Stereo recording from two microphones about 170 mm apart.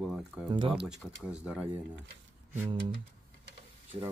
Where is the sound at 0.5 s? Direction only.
30° right (ahead or behind).